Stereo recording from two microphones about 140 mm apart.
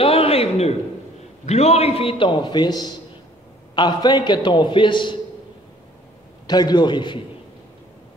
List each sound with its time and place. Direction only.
0.0 s a sound: 45° left (ahead or behind)
1.4 s a man's voice: 50° left (ahead or behind); by 5.2 s 35° left (ahead or behind)
6.4 s a man's voice: 30° left (ahead or behind)